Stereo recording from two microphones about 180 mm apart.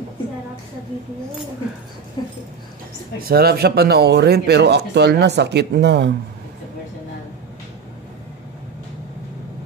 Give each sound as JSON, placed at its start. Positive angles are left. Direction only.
{"t": 2.2, "sound": "speech", "side_deg": 25}
{"t": 3.3, "sound": "speech", "side_deg": -60}